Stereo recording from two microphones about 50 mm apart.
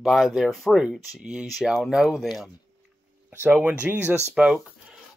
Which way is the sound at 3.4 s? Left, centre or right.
Right.